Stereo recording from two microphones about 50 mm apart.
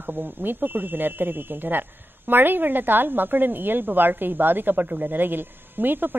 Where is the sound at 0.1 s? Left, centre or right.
Right.